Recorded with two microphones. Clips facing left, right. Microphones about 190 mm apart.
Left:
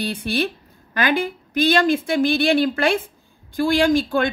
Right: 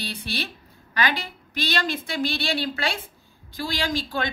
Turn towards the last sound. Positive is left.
turn(degrees=55)  # may be behind; listen again after turning